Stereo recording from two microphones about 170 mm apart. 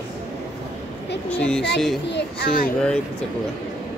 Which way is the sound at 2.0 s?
80° left.